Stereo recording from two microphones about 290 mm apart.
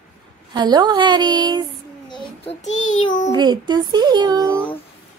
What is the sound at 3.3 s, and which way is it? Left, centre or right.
A child's voice, centre.